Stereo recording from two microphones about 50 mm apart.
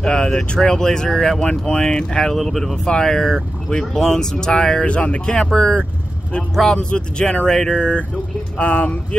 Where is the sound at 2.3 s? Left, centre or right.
Centre.